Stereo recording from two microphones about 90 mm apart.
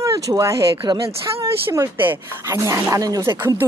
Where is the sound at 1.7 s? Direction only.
25° right (ahead or behind).